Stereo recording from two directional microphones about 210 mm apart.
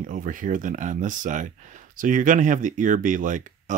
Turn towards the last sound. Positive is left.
turn(degrees=-40)  # may be behind; listen again after turning